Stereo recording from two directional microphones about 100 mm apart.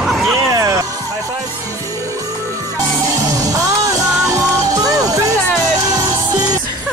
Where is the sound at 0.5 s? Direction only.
35° right (ahead or behind).